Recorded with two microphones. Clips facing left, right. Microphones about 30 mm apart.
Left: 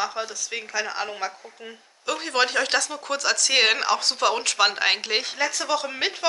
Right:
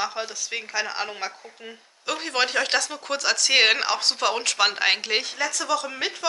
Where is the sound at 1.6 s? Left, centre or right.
Centre.